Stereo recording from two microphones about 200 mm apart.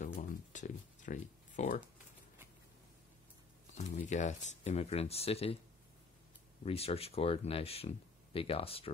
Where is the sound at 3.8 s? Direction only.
35° left (ahead or behind).